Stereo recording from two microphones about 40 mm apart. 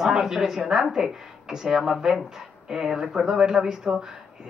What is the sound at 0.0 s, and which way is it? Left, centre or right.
Speech, centre.